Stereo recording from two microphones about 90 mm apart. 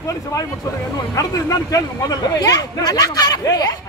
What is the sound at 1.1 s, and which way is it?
Speech, 45° left (ahead or behind).